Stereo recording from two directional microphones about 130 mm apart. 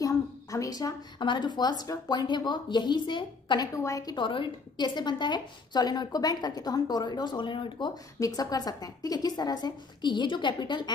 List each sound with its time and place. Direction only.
0.0 s a woman's voice: 25° left (ahead or behind)
3.7 s a woman's voice: 25° left (ahead or behind)